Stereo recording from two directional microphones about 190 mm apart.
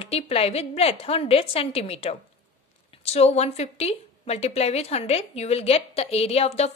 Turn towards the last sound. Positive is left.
turn(degrees=35)  # may be behind; listen again after turning